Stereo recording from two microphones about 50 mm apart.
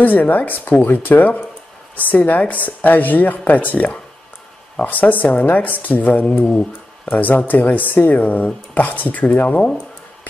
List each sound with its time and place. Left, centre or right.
0.0 s a woman's voice: left
6.4 s speech: centre
7.1 s a woman's voice: left